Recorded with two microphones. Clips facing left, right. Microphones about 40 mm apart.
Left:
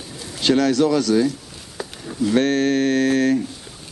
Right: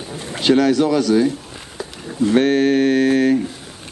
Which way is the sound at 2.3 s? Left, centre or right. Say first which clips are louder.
Right 3 dB; centre.